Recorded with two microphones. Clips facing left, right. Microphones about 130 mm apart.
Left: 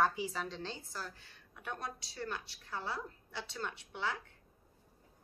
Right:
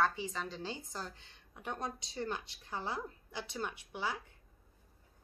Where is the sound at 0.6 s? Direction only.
15° right (ahead or behind).